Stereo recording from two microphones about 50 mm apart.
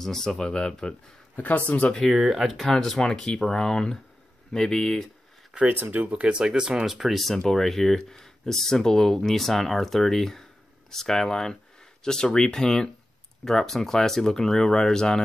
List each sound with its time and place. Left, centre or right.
0.0 s speech: centre
1.3 s speech: left
2.0 s speech: centre
2.6 s speech: centre
5.7 s speech: right
6.2 s speech: centre